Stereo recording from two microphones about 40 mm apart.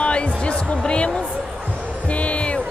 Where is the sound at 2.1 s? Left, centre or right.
Left.